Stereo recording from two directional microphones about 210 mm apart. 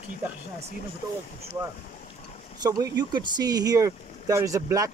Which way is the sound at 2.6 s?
20° right (ahead or behind).